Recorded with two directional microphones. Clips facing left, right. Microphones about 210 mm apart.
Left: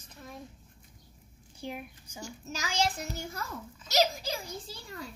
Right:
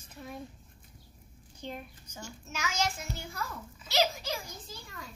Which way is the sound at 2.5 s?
30° left (ahead or behind).